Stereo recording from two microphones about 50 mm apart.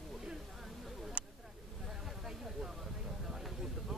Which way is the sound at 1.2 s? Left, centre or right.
Right.